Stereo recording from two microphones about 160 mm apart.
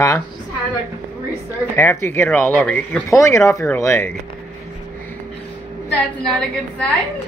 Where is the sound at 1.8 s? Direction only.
15° left (ahead or behind).